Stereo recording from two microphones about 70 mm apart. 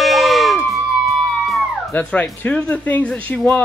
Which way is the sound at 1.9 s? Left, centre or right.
Left.